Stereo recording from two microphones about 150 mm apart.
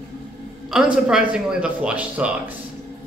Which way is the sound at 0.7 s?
5° right (ahead or behind).